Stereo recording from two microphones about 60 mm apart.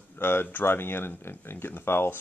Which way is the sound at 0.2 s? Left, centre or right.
Left.